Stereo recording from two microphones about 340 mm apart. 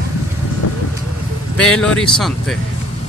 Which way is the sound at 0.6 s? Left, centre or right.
Left.